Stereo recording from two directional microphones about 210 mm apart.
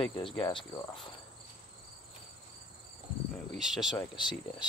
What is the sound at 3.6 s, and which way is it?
Speech, centre (ahead or behind).